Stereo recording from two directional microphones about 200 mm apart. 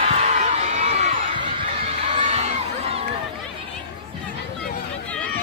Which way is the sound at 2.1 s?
35° right (ahead or behind).